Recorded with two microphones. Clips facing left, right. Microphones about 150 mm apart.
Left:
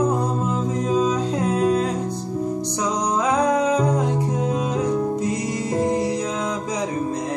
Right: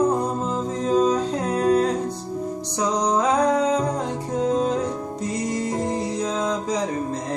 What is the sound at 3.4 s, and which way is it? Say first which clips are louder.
Music: left 1 dB; 15° left (ahead or behind).